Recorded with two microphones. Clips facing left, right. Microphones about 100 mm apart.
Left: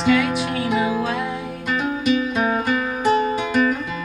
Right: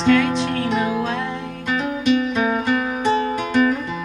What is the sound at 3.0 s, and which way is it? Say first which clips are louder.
Music: left 3 dB; 10° left (ahead or behind).